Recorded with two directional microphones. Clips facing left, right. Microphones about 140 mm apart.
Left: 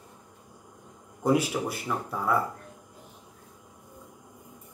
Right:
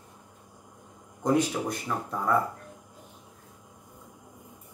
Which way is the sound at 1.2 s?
5° left (ahead or behind).